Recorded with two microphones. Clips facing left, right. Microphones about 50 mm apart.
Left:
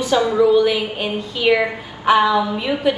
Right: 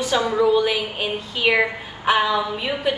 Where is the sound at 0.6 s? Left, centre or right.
Centre.